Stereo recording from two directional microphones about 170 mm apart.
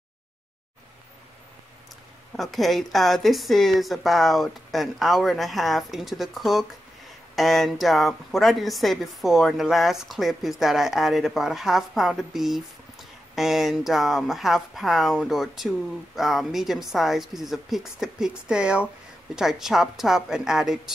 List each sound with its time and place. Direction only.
2.3 s speech: centre (ahead or behind)